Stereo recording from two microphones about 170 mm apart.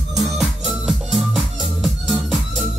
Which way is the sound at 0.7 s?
Centre (ahead or behind).